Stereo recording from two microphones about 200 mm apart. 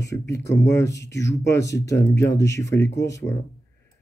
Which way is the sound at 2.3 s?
60° left (ahead or behind).